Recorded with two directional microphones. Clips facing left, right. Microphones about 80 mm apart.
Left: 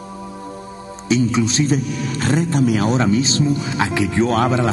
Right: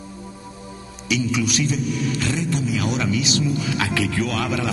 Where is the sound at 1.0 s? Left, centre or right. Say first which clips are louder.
Left 5 dB; left.